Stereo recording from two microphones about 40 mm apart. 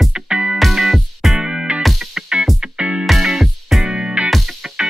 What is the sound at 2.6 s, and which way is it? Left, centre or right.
Music, right.